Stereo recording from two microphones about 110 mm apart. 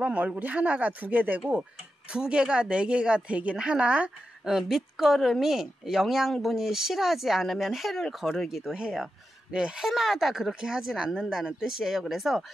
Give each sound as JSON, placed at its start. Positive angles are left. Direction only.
{"t": 0.0, "sound": "speech", "side_deg": -10}